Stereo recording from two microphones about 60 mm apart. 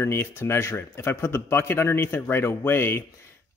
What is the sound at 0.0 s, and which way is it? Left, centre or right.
Speech, left.